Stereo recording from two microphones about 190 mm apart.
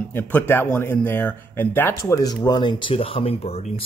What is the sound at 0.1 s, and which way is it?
Speech, 10° left (ahead or behind).